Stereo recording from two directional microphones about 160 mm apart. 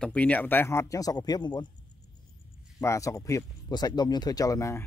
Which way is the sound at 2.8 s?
20° left (ahead or behind).